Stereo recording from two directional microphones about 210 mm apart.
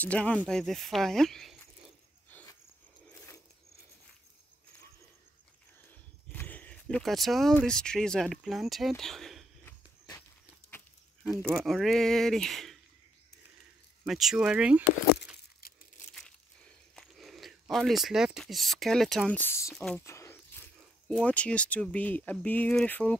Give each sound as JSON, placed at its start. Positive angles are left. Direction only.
{"t": 0.0, "sound": "speech", "side_deg": 5}
{"t": 2.2, "sound": "a sound", "side_deg": 10}
{"t": 6.3, "sound": "speech", "side_deg": 10}
{"t": 11.2, "sound": "speech", "side_deg": 0}
{"t": 14.0, "sound": "speech", "side_deg": 0}
{"t": 15.6, "sound": "crumpling", "side_deg": 45}
{"t": 16.2, "sound": "a sound", "side_deg": 5}
{"t": 19.7, "sound": "speech", "side_deg": 0}
{"t": 20.1, "sound": "a sound", "side_deg": 15}
{"t": 21.1, "sound": "speech", "side_deg": 5}